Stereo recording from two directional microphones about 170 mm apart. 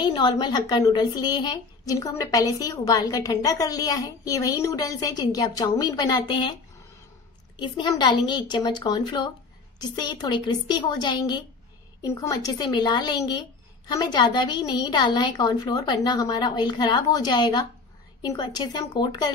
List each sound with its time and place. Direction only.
0.0 s a woman's voice: 25° left (ahead or behind)
7.5 s a woman's voice: 30° left (ahead or behind)